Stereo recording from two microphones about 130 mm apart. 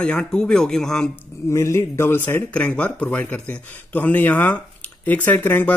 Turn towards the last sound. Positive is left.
turn(degrees=15)  # may be behind; listen again after turning